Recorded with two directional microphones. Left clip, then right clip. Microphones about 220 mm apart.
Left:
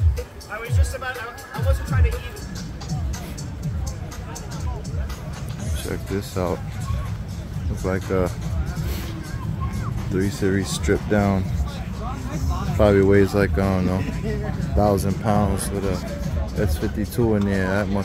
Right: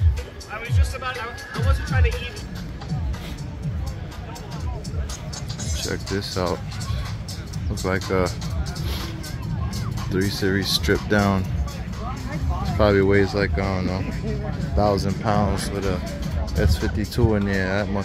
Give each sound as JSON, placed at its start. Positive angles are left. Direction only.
{"t": 0.7, "sound": "music", "side_deg": 60}
{"t": 5.9, "sound": "speech", "side_deg": 5}
{"t": 7.8, "sound": "speech", "side_deg": 5}
{"t": 10.1, "sound": "speech", "side_deg": 10}
{"t": 12.7, "sound": "speech", "side_deg": 15}
{"t": 14.8, "sound": "speech", "side_deg": 20}